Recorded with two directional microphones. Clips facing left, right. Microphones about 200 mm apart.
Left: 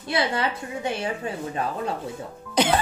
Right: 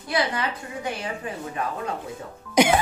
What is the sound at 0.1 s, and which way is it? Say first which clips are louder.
Speech: left 1 dB; 30° left (ahead or behind).